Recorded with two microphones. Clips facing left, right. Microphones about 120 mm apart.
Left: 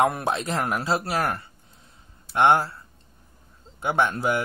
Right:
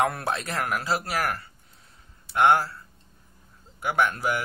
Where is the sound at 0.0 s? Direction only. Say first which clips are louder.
Left 3 dB; 20° left (ahead or behind).